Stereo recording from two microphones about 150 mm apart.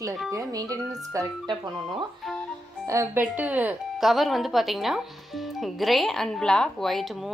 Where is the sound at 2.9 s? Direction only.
15° right (ahead or behind).